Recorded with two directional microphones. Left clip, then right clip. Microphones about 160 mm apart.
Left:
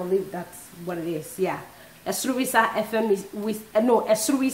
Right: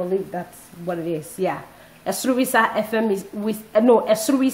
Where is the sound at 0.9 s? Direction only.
30° right (ahead or behind).